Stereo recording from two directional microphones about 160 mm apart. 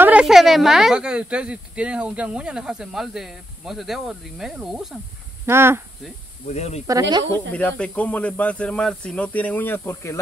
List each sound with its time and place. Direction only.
0.0 s speech: 5° right (ahead or behind)
5.5 s speech: 15° right (ahead or behind)
6.4 s speech: 45° left (ahead or behind)
6.9 s speech: 25° right (ahead or behind)
7.5 s speech: 10° left (ahead or behind)